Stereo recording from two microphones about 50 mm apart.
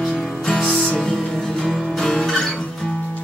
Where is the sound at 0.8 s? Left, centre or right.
Centre.